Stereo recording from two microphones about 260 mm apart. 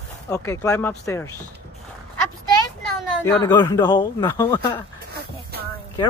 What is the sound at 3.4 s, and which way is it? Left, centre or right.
Speech, centre.